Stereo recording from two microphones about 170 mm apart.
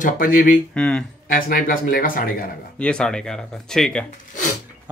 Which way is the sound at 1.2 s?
55° left (ahead or behind).